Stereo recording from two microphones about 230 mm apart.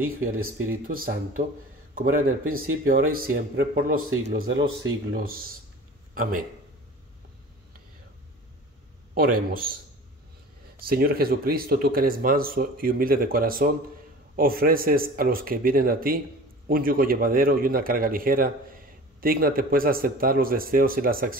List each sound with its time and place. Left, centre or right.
0.2 s speech: right
4.4 s speech: right
9.1 s speech: right
10.8 s speech: right